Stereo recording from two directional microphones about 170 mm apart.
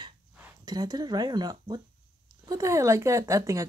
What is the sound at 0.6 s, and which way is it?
Speech, 20° right (ahead or behind).